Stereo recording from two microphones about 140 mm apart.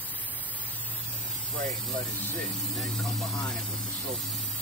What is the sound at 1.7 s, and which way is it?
Speech, centre (ahead or behind).